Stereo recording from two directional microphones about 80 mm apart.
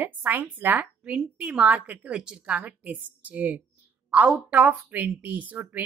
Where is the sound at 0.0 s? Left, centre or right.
Right.